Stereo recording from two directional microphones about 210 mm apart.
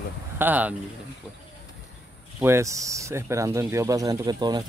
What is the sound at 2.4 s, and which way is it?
Speech, 10° right (ahead or behind).